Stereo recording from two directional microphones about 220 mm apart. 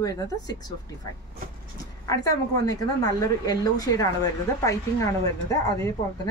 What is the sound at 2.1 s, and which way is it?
Speech, 15° left (ahead or behind).